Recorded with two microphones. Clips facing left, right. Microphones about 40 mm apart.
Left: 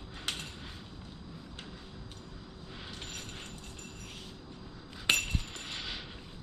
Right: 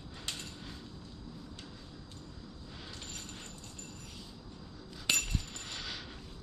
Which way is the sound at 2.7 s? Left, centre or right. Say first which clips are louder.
Left 4 dB; left.